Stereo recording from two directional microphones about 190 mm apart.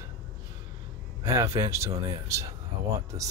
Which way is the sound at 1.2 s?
15° right (ahead or behind).